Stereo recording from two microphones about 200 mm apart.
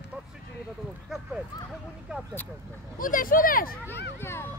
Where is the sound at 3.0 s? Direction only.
45° left (ahead or behind).